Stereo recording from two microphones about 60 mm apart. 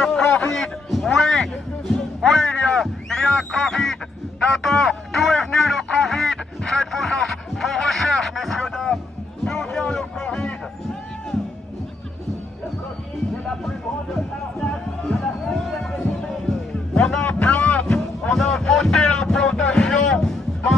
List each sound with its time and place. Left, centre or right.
0.0 s a sound: centre
4.6 s music: centre
15.2 s music: centre
17.3 s boat: left
17.8 s music: centre
19.1 s a sound: centre